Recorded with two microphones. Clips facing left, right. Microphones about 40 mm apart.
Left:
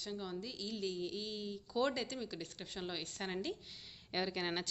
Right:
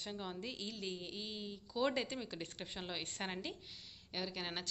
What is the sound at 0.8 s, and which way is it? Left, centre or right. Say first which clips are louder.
A woman's voice: left 6 dB; centre.